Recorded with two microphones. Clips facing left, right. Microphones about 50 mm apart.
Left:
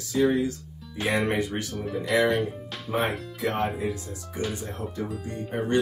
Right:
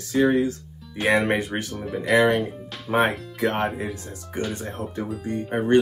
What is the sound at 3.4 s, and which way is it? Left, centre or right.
Speech, right.